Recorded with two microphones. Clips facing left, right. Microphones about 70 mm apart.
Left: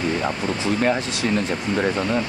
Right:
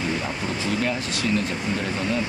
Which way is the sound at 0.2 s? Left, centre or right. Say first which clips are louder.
Left 4 dB; left.